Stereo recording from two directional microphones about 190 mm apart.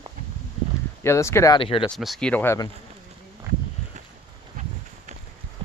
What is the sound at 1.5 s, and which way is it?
Speech, 30° left (ahead or behind).